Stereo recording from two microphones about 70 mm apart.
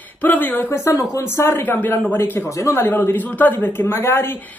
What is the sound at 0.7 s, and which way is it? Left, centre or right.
Speech, left.